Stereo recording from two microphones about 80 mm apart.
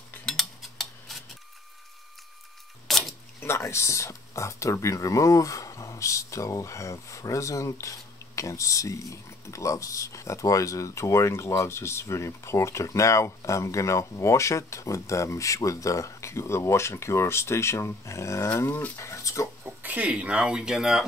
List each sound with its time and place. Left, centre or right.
0.2 s cutlery: centre
2.9 s a sound: centre
3.3 s speech: left
19.8 s speech: centre